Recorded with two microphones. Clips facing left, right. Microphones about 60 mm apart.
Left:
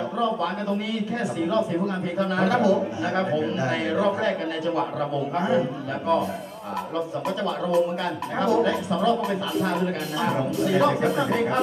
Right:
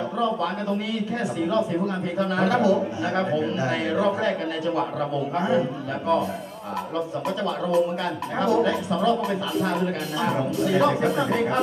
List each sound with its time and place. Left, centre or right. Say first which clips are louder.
0.2 s a sound: even; centre
2.1 s speech: even; centre
7.2 s speech: even; centre